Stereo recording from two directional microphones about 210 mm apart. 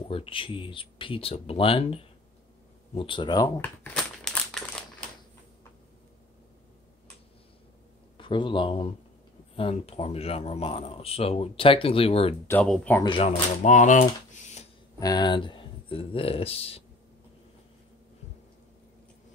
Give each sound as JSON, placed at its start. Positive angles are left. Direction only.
{"t": 0.1, "sound": "speech", "side_deg": 25}
{"t": 3.6, "sound": "crumpling", "side_deg": 5}
{"t": 8.2, "sound": "speech", "side_deg": 25}
{"t": 12.4, "sound": "speech", "side_deg": 5}
{"t": 13.0, "sound": "speech", "side_deg": 25}
{"t": 13.6, "sound": "speech", "side_deg": 35}
{"t": 15.0, "sound": "speech", "side_deg": 20}